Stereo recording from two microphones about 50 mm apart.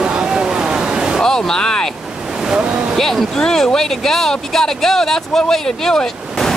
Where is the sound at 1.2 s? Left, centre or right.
Centre.